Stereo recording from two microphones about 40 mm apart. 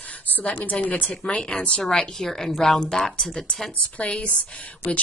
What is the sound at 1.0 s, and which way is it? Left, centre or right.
A woman's voice, left.